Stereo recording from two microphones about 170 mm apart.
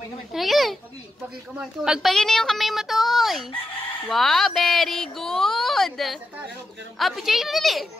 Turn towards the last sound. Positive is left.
turn(degrees=0)  # may be behind; listen again after turning